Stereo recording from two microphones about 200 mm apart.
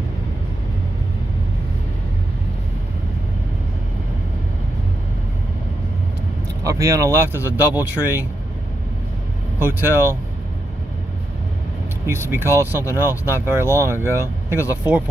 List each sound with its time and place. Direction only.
6.6 s speech: 15° right (ahead or behind)
9.6 s speech: 10° right (ahead or behind)
12.1 s speech: 10° right (ahead or behind)